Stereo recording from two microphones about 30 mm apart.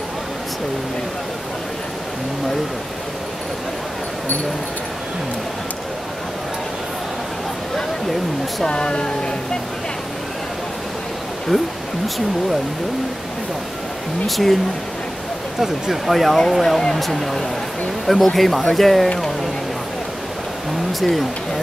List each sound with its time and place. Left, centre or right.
8.6 s speech: left
11.5 s speech: right
14.2 s speech: centre
16.1 s speech: centre
21.0 s speech: centre